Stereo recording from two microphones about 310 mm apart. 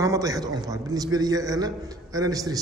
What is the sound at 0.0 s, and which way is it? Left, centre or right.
A man's voice, centre.